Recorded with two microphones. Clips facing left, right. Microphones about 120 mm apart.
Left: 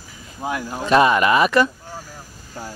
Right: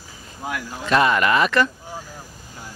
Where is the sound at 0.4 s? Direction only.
25° left (ahead or behind).